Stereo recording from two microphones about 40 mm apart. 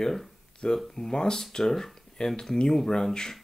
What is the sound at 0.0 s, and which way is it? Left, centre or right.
Speech, centre.